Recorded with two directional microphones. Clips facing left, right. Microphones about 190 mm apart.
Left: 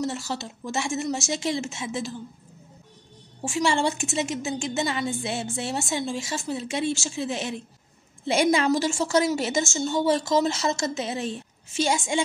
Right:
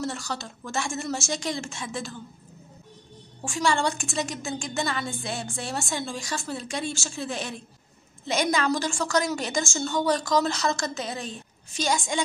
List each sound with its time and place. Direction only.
0.0 s a woman's voice: 25° left (ahead or behind)
3.4 s a woman's voice: 25° left (ahead or behind)